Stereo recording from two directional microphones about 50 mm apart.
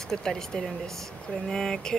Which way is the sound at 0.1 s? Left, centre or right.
Centre.